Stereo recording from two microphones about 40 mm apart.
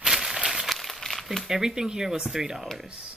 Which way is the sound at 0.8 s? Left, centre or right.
Centre.